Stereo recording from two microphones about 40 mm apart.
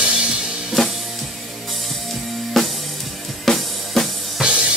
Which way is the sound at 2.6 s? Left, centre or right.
Centre.